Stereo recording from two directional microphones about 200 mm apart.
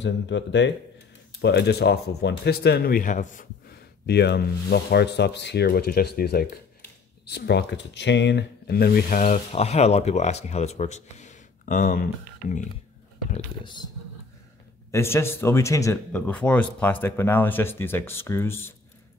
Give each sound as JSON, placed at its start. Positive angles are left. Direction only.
{"t": 0.0, "sound": "speech", "side_deg": 60}
{"t": 4.0, "sound": "speech", "side_deg": 55}
{"t": 14.9, "sound": "speech", "side_deg": 15}